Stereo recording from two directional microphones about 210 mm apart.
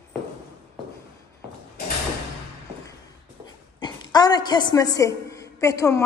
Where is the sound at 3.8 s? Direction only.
20° left (ahead or behind).